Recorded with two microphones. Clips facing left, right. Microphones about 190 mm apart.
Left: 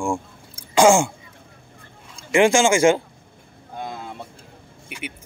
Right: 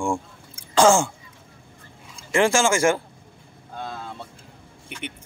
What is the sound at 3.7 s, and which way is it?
Vehicle, 15° left (ahead or behind).